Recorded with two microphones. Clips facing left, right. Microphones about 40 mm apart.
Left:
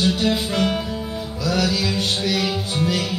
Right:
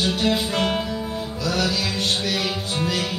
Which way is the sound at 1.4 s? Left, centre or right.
Centre.